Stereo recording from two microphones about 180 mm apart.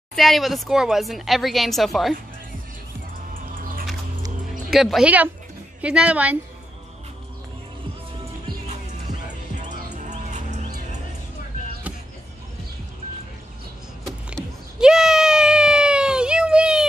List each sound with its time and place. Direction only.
0.1 s a woman's voice: centre (ahead or behind)
4.7 s a woman's voice: centre (ahead or behind)
9.6 s music: 40° right (ahead or behind)
14.3 s a sound: 5° right (ahead or behind)